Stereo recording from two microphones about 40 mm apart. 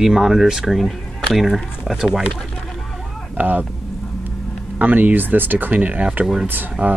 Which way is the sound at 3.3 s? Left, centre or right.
Right.